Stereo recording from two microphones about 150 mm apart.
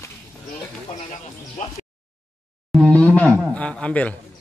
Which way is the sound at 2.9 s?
10° left (ahead or behind).